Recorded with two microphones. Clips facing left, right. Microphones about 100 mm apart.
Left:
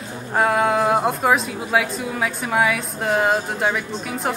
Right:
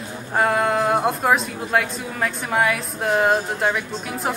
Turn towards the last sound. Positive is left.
turn(degrees=0)  # may be behind; listen again after turning